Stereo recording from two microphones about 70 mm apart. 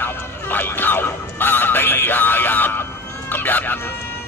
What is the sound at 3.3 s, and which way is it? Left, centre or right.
Cat, left.